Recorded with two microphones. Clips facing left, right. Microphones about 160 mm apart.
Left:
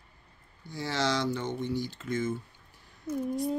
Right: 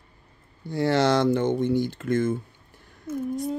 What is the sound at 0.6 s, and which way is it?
Speech, 60° right (ahead or behind).